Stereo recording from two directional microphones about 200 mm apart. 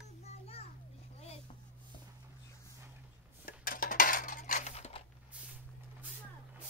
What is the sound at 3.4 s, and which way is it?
Dishes, 45° left (ahead or behind).